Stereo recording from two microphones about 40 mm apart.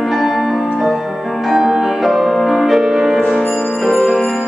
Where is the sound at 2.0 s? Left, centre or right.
Centre.